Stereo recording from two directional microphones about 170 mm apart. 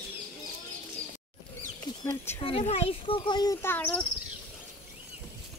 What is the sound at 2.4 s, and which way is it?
Speech, 35° left (ahead or behind).